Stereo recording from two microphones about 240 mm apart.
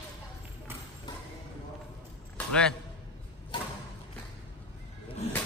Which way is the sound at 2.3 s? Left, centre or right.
Centre.